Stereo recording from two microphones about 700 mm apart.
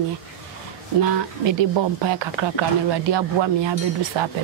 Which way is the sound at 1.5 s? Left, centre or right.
Right.